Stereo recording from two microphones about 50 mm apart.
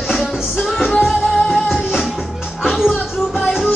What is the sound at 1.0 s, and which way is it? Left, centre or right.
Music, centre.